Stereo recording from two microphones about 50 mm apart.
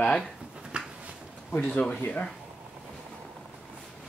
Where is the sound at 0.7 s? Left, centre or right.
Right.